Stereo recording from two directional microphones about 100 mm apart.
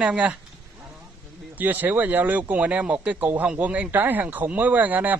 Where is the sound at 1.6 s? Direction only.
20° right (ahead or behind).